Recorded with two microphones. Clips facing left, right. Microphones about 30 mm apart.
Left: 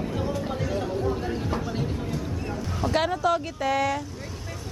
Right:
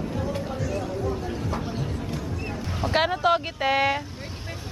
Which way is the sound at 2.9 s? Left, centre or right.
Right.